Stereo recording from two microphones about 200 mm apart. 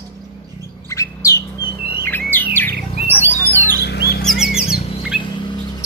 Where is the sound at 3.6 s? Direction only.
55° left (ahead or behind).